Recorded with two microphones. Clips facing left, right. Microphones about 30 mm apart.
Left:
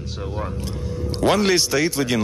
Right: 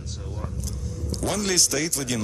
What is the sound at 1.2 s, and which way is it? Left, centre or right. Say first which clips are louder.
Speech: left 7 dB; left.